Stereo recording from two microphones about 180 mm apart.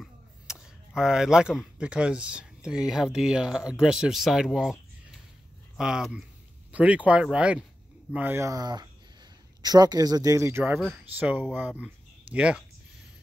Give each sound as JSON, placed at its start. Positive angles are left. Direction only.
{"t": 0.0, "sound": "speech", "side_deg": -5}
{"t": 5.8, "sound": "speech", "side_deg": -5}